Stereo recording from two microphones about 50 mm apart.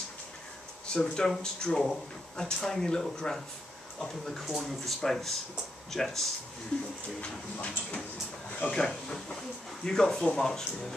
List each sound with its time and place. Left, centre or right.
0.9 s speech: centre
7.2 s speech: left
8.5 s a sound: left
8.7 s speech: centre